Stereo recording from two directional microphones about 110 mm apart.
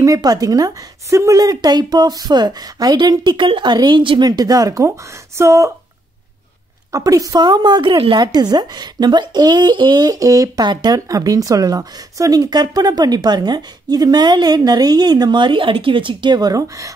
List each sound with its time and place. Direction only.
0.0 s speech: 35° right (ahead or behind)
4.3 s speech: 35° right (ahead or behind)
6.9 s speech: 30° right (ahead or behind)